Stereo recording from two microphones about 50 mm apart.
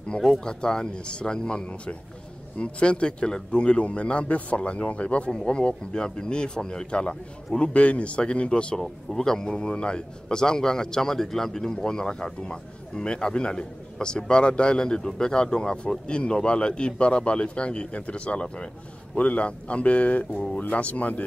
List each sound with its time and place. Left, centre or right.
0.2 s a man's voice: centre
8.7 s a man's voice: centre; by 21.2 s left